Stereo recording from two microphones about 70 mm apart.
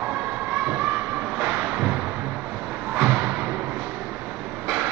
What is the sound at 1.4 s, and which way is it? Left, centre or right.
Music, centre.